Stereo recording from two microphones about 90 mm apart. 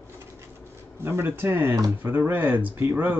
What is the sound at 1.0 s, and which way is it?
Speech, 25° right (ahead or behind).